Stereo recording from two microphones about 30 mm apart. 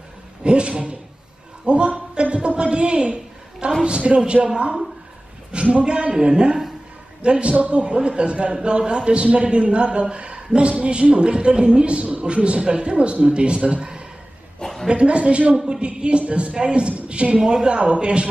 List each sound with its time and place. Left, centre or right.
0.4 s a man's voice: right
1.7 s a sound: right
3.8 s a man's voice: right
5.5 s a man's voice: right
7.5 s a man's voice: right
7.8 s a man's voice: right
14.9 s a man's voice: right
17.4 s a man's voice: right
18.0 s a man's voice: right